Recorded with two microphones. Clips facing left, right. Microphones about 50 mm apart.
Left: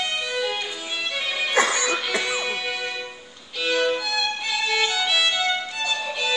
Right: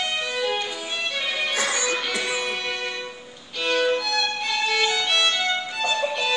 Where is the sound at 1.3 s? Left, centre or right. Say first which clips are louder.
Left 1 dB; centre.